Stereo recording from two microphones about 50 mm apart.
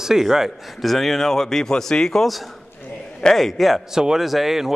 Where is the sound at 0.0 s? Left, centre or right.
Centre.